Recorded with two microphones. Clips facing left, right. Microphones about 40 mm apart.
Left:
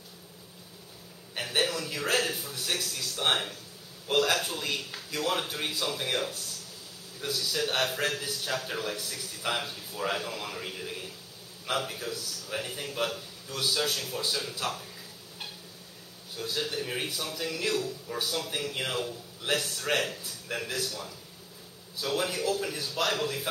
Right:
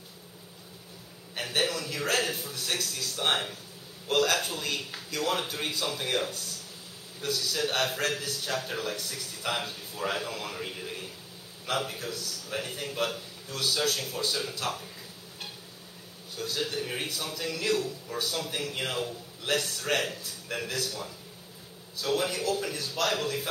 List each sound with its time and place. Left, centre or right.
1.3 s a man's voice: centre
16.3 s a man's voice: centre